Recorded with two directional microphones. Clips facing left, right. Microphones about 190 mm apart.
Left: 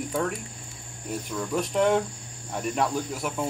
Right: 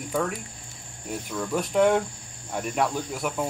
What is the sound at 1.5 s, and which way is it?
Speech, 5° right (ahead or behind).